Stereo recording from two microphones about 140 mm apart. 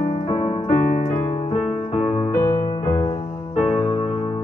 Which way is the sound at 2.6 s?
45° left (ahead or behind).